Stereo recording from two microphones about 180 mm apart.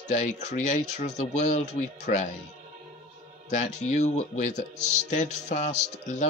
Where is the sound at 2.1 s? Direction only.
50° left (ahead or behind).